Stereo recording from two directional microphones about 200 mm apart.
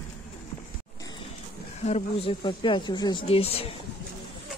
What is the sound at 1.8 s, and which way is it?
Speech, 30° left (ahead or behind).